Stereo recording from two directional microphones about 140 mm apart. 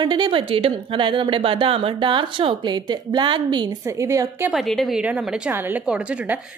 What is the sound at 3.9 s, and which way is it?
Speech, 20° right (ahead or behind).